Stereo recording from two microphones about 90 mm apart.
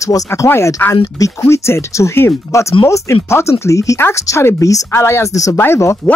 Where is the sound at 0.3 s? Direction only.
30° left (ahead or behind).